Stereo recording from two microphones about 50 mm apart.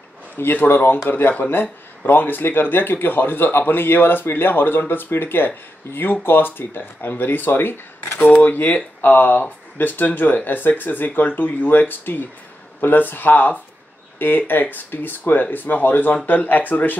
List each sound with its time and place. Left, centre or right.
0.4 s speech: left
8.2 s speech: left